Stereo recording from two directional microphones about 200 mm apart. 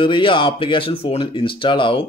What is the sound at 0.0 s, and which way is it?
Speech, 25° left (ahead or behind).